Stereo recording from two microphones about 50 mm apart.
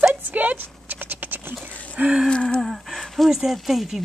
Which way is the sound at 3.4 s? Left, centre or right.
Centre.